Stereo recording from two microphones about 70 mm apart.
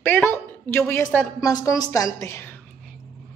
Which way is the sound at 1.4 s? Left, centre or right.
Left.